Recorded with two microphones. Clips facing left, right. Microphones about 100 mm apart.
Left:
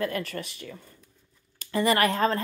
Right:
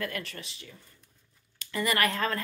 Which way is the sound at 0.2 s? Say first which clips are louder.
Left 8 dB; 50° left (ahead or behind).